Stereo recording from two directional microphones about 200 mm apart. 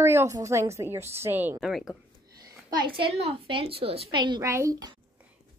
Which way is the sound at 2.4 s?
20° right (ahead or behind).